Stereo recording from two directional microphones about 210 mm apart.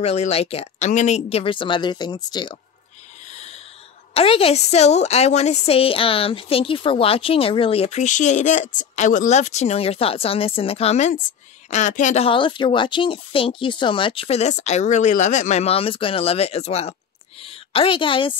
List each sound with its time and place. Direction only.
0.0 s a woman's voice: 30° left (ahead or behind)
3.3 s snort: 30° left (ahead or behind)
4.1 s a woman's voice: 25° left (ahead or behind)